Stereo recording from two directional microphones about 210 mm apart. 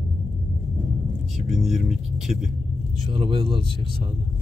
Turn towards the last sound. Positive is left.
turn(degrees=-25)  # may be behind; listen again after turning